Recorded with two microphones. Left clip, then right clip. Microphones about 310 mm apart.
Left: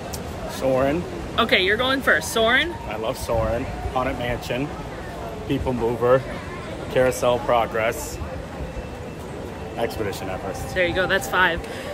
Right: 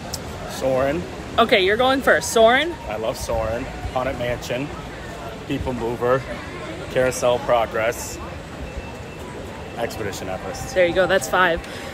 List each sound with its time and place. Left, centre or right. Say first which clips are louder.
0.6 s speech: even; centre
1.3 s speech: right 3 dB; centre
3.0 s speech: left 1 dB; centre
6.0 s speech: left 1 dB; centre
9.8 s speech: left 1 dB; centre
10.8 s speech: right 4 dB; centre